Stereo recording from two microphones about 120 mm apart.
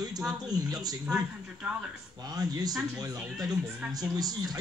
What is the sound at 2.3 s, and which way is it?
Speech, 35° right (ahead or behind).